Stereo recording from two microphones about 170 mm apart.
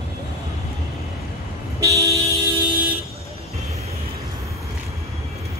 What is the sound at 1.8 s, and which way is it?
Toot, 20° right (ahead or behind).